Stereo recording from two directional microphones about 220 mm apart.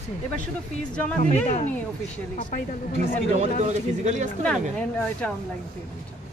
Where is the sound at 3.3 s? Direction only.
30° right (ahead or behind).